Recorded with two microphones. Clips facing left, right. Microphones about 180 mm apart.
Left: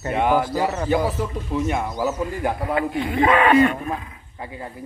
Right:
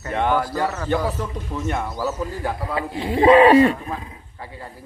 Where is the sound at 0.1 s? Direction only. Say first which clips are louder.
Left 1 dB; 10° left (ahead or behind).